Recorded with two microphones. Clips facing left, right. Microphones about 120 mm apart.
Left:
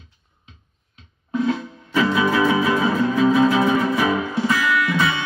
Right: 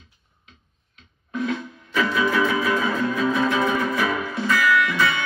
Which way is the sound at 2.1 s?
25° left (ahead or behind).